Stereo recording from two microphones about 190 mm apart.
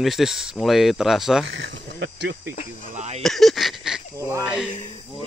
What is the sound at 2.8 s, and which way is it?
Speech, 40° right (ahead or behind).